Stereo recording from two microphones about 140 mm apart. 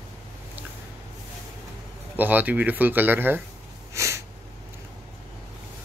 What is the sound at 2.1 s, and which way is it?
Speech, 10° right (ahead or behind).